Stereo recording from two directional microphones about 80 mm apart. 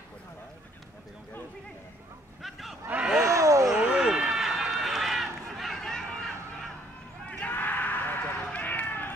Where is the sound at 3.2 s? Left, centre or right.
Right.